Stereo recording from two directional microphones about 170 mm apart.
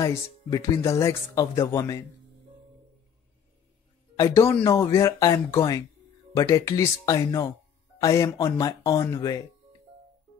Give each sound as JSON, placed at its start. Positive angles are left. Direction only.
{"t": 0.0, "sound": "speech", "side_deg": 20}
{"t": 4.2, "sound": "speech", "side_deg": 15}